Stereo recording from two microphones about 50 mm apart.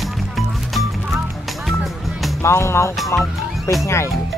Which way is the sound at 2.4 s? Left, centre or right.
Left.